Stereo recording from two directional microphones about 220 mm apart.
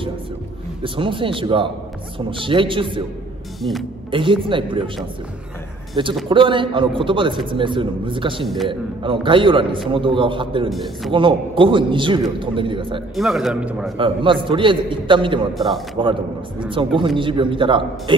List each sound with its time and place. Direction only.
0.8 s a man's voice: 25° right (ahead or behind)
6.2 s a man's voice: 20° right (ahead or behind)
13.1 s a man's voice: centre (ahead or behind)
13.9 s a man's voice: 20° right (ahead or behind)
15.5 s a man's voice: centre (ahead or behind)
16.0 s a man's voice: 20° right (ahead or behind)